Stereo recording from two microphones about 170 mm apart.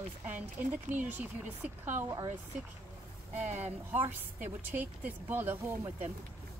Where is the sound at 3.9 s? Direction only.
10° right (ahead or behind).